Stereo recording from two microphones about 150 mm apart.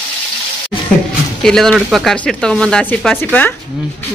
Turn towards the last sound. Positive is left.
turn(degrees=10)  # may be behind; listen again after turning